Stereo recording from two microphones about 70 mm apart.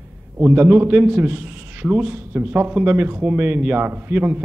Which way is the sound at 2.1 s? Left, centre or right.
Right.